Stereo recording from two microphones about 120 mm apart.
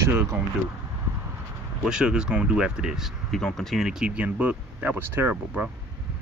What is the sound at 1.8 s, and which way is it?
Speech, 5° right (ahead or behind).